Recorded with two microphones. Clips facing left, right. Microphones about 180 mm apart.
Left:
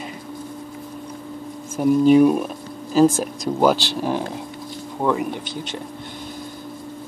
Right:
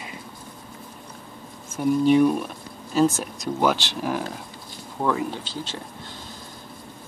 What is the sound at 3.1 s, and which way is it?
Speech, 35° left (ahead or behind).